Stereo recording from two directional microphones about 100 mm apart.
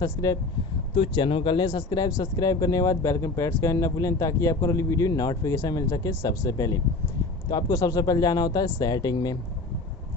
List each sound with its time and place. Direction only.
0.0 s a man's voice: 40° left (ahead or behind)
1.1 s a man's voice: 55° left (ahead or behind)